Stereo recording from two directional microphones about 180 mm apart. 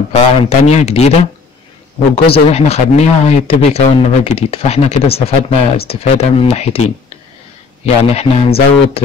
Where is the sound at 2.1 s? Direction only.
35° left (ahead or behind).